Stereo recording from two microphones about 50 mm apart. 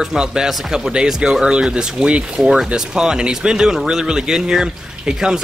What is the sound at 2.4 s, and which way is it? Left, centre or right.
Speech, centre.